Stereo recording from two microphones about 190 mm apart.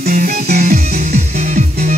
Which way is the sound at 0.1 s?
40° right (ahead or behind).